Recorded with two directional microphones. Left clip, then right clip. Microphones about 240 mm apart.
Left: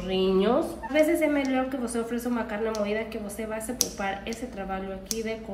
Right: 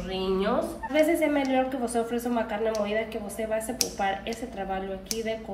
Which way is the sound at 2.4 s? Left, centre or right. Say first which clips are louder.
Right 1 dB; centre.